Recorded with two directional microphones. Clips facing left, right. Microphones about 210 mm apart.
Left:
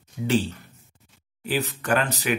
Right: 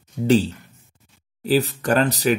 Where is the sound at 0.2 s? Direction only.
40° right (ahead or behind).